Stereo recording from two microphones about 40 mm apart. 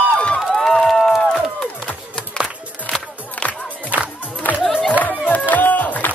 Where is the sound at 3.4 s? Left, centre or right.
Left.